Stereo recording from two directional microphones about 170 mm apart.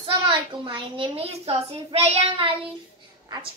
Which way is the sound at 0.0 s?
30° right (ahead or behind).